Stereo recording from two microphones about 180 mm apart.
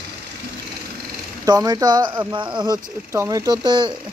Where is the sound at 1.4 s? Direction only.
20° right (ahead or behind).